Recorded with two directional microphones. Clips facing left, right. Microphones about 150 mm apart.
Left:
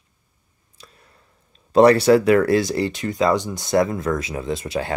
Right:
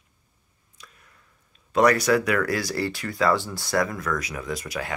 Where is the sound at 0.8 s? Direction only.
30° left (ahead or behind).